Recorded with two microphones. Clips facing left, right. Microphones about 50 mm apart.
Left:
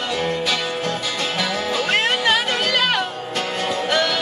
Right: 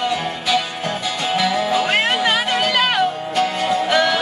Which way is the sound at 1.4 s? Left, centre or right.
Centre.